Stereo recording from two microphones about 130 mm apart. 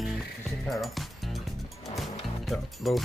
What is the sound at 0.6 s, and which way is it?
Music, centre (ahead or behind).